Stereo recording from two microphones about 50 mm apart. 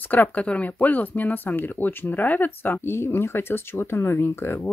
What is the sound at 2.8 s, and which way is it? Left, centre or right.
Speech, left.